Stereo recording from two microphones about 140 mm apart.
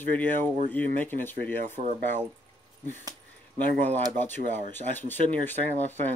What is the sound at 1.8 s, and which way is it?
Speech, 55° right (ahead or behind).